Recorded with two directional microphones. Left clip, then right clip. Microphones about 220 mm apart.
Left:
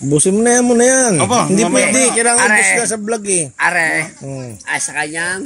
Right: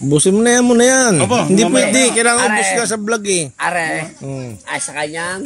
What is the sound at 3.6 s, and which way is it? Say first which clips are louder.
Speech: left 8 dB; 15° left (ahead or behind).